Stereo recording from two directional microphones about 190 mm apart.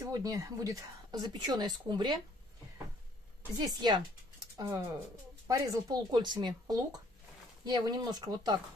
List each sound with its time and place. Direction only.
0.0 s a woman's voice: 20° right (ahead or behind)
3.5 s a woman's voice: 20° right (ahead or behind)